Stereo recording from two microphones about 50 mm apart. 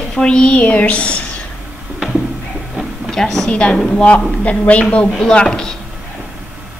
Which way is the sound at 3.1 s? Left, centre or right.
Centre.